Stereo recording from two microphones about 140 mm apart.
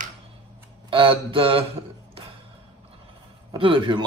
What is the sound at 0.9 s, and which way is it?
Mantra, 40° right (ahead or behind).